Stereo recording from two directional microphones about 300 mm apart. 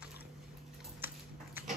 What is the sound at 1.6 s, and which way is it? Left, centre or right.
Dog, centre.